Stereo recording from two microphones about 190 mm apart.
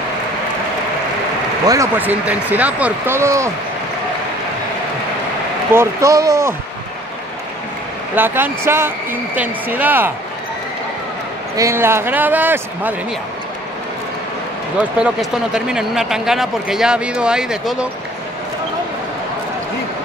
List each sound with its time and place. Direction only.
1.7 s speech: 15° right (ahead or behind)
5.7 s speech: 15° right (ahead or behind)
8.2 s speech: 10° right (ahead or behind)
11.5 s speech: 15° right (ahead or behind)
14.8 s speech: 5° right (ahead or behind)